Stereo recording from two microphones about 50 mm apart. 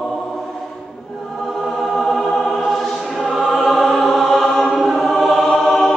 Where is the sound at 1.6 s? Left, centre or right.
Centre.